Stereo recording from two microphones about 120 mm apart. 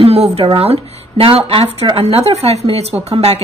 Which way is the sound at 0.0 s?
60° right (ahead or behind).